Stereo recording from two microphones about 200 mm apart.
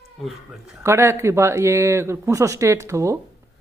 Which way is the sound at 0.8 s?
15° right (ahead or behind).